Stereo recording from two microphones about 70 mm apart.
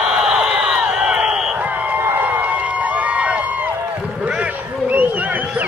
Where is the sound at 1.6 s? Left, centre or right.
Right.